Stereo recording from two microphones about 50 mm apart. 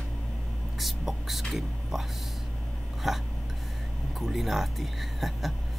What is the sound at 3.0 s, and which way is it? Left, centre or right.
Speech, centre.